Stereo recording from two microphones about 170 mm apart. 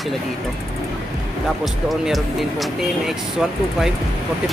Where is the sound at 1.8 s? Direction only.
Centre (ahead or behind).